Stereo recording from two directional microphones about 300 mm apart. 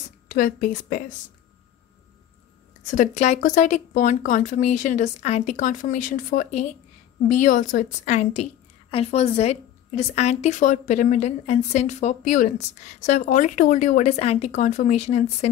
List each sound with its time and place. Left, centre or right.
0.3 s a woman's voice: left
2.9 s a woman's voice: left